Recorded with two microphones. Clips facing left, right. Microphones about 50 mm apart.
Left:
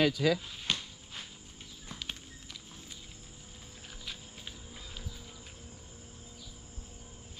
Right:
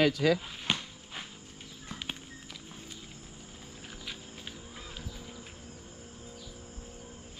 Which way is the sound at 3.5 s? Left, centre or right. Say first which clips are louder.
Right 3 dB; centre.